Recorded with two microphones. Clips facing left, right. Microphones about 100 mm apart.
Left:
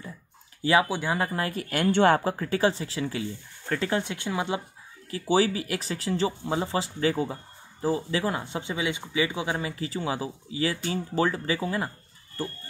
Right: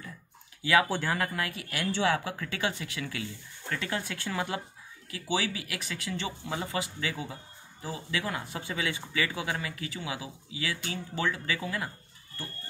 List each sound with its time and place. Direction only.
0.8 s speech: 10° left (ahead or behind)
1.1 s speech: 30° left (ahead or behind)
3.9 s speech: 20° left (ahead or behind)
5.1 s speech: 35° left (ahead or behind)